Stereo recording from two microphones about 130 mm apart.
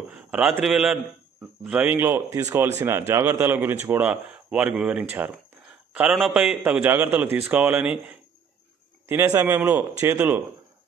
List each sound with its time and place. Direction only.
0.1 s a man's voice: 5° right (ahead or behind)